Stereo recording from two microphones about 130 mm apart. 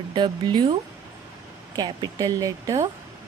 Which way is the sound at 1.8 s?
30° right (ahead or behind).